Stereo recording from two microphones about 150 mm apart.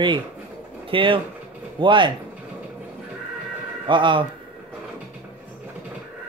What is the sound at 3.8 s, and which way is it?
Speech, 35° right (ahead or behind).